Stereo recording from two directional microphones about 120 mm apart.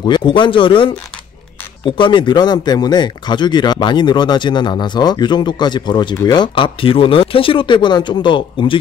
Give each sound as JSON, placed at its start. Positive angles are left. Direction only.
{"t": 0.0, "sound": "speech", "side_deg": 40}